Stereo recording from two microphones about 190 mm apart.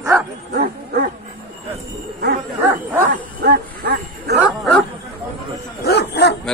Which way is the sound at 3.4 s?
55° right (ahead or behind).